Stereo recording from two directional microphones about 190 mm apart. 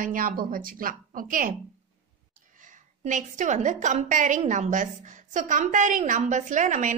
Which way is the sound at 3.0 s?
40° right (ahead or behind).